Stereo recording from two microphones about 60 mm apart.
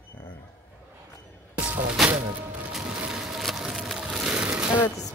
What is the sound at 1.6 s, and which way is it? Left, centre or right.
Music, right.